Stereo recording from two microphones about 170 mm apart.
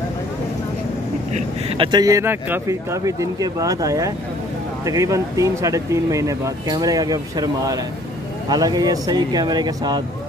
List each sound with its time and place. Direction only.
1.3 s speech: 30° right (ahead or behind)